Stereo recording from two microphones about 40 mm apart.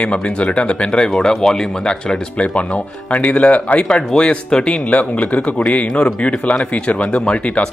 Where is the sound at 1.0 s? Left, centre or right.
Centre.